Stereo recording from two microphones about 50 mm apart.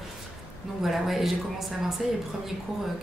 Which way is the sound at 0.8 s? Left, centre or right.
Centre.